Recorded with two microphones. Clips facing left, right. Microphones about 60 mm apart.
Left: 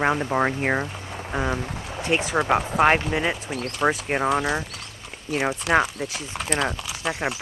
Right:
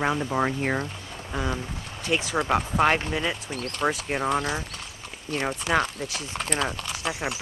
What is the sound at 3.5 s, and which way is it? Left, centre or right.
Speech, centre.